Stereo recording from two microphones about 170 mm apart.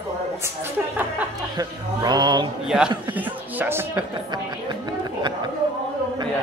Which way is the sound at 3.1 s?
10° right (ahead or behind).